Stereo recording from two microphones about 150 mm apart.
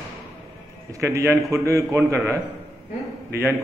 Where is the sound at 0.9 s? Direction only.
20° right (ahead or behind).